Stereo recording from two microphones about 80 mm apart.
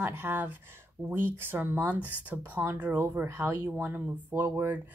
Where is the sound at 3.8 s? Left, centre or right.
Right.